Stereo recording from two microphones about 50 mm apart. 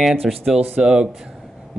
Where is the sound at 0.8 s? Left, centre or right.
Centre.